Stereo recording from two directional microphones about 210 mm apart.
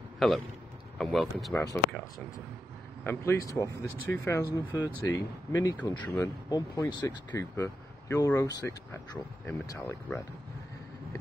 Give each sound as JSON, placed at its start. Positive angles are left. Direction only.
{"t": 0.2, "sound": "speech", "side_deg": 0}
{"t": 1.6, "sound": "speech", "side_deg": 15}